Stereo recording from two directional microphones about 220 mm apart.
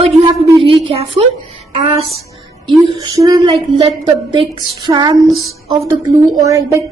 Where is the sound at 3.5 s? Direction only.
25° right (ahead or behind).